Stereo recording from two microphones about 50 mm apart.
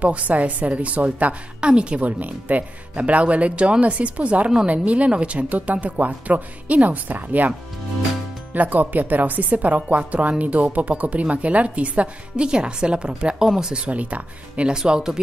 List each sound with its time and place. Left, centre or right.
0.0 s a woman's voice: right
8.5 s a woman's voice: right
14.7 s speech: centre